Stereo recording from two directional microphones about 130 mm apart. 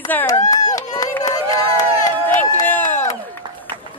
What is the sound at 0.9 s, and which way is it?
Run, 25° left (ahead or behind).